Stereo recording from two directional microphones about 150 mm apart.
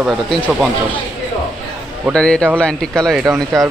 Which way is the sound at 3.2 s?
20° right (ahead or behind).